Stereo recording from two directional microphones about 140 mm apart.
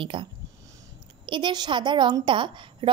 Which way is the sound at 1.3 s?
35° right (ahead or behind).